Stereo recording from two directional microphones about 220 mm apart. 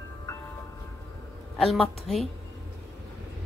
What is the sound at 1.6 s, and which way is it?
Speech, centre (ahead or behind).